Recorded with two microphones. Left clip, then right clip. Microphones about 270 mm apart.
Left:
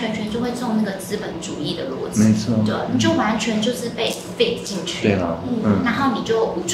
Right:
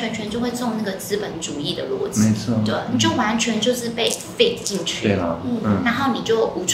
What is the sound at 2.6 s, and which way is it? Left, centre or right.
A woman's voice, right.